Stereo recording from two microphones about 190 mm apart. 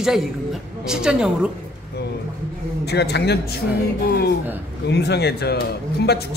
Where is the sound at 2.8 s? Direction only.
60° left (ahead or behind).